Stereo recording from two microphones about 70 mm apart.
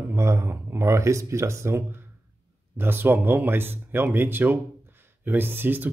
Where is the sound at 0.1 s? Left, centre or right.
Right.